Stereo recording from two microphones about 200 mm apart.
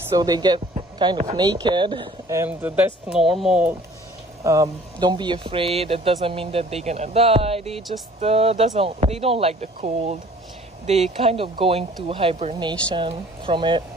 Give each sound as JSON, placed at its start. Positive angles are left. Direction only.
{"t": 0.2, "sound": "speech", "side_deg": -20}
{"t": 4.4, "sound": "speech", "side_deg": -15}
{"t": 10.9, "sound": "speech", "side_deg": -30}